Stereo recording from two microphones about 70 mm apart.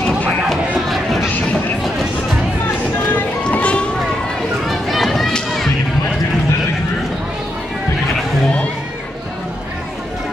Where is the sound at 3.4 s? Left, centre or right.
Centre.